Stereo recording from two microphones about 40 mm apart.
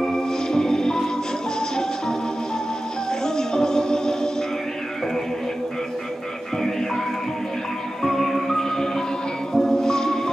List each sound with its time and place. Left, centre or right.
0.0 s music: centre
3.1 s music: centre
8.0 s music: centre